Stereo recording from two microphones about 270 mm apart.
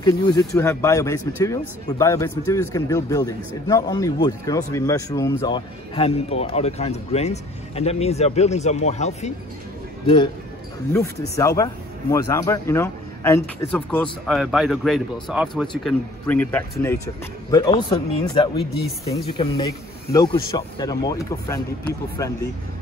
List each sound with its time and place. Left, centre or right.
0.0 s speech: centre
19.0 s speech: centre